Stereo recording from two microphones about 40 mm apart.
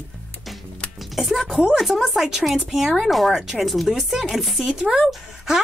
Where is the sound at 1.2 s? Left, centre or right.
Centre.